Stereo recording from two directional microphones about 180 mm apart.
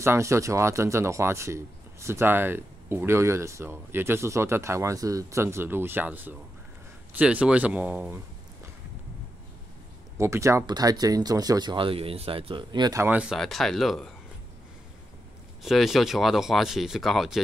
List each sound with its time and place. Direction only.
0.0 s speech: 15° right (ahead or behind)
10.1 s speech: 15° right (ahead or behind); by 14.1 s centre (ahead or behind)
15.6 s speech: centre (ahead or behind)